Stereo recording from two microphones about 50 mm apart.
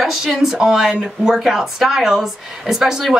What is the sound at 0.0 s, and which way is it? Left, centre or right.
A woman's voice, centre.